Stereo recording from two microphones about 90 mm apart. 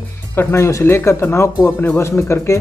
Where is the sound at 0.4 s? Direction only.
30° left (ahead or behind).